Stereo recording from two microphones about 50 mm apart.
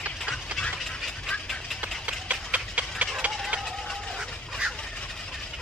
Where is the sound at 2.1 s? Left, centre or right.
Right.